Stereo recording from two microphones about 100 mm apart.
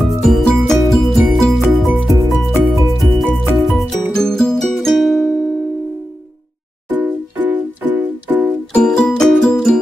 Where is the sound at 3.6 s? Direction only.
Centre (ahead or behind).